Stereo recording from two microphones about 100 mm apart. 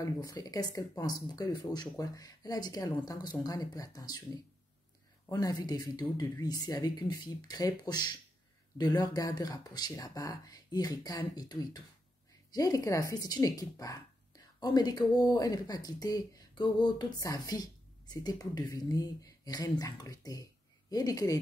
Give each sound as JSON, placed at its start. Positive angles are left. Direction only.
{"t": 0.0, "sound": "speech", "side_deg": 35}
{"t": 5.3, "sound": "speech", "side_deg": 40}
{"t": 17.2, "sound": "a woman's voice", "side_deg": 35}